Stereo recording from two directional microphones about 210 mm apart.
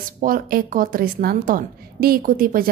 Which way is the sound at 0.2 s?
45° right (ahead or behind).